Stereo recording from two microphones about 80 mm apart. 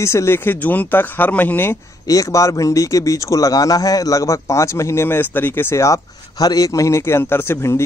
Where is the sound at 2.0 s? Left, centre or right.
Left.